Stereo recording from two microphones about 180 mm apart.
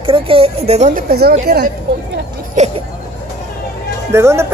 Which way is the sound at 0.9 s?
60° right (ahead or behind).